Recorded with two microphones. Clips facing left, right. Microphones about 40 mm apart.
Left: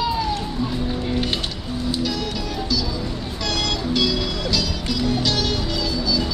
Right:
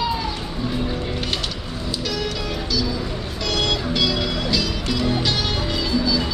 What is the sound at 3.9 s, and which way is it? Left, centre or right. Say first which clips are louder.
Music: even; centre.